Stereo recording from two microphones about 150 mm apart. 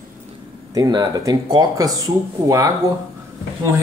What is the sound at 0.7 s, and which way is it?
A man's voice, 25° right (ahead or behind).